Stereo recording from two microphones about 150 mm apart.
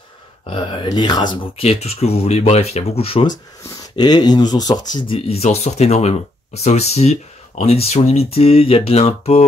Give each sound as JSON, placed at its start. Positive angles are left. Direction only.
{"t": 0.5, "sound": "speech", "side_deg": 30}
{"t": 1.6, "sound": "speech", "side_deg": 45}
{"t": 3.9, "sound": "speech", "side_deg": 30}